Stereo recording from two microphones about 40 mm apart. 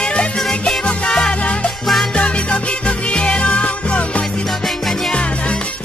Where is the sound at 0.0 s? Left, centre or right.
Left.